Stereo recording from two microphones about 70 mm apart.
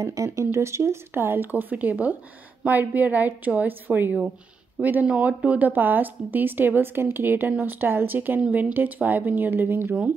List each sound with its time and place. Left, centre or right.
0.0 s speech: right